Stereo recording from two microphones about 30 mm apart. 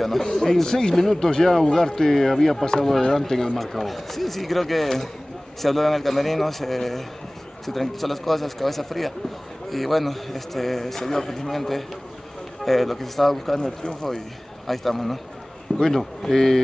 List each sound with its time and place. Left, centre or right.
0.2 s speech: centre
1.0 s a man's voice: centre
13.6 s speech: left
14.7 s speech: centre
15.7 s speech: left
16.2 s speech: centre